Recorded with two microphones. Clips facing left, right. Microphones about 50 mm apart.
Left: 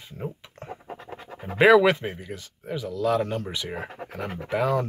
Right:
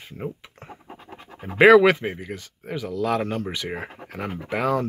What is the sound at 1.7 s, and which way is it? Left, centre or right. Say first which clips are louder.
Speech: right 3 dB; centre.